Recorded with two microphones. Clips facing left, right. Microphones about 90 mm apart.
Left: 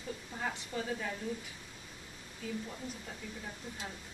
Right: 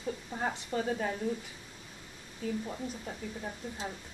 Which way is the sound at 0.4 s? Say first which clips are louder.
Right 4 dB; 40° right (ahead or behind).